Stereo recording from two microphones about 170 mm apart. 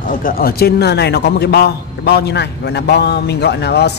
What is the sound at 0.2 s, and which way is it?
Speech, 60° left (ahead or behind).